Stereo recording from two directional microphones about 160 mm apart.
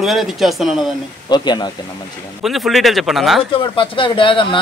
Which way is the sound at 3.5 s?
35° left (ahead or behind).